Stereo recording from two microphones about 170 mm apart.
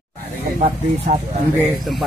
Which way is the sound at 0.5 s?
40° right (ahead or behind).